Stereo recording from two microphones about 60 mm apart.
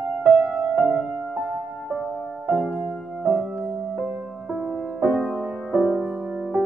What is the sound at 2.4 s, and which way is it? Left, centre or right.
Music, centre.